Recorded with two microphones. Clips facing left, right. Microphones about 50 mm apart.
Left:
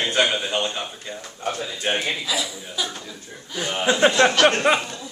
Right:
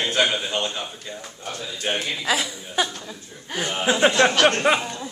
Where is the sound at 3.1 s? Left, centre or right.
Right.